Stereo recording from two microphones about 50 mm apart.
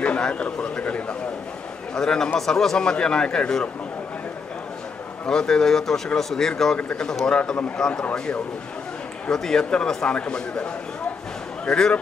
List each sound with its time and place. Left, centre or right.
0.0 s a man's voice: left
5.2 s a man's voice: centre
6.8 s a man's voice: left
9.3 s a man's voice: centre